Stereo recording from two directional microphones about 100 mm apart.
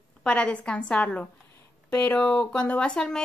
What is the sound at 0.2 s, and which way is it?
Speech, 10° left (ahead or behind).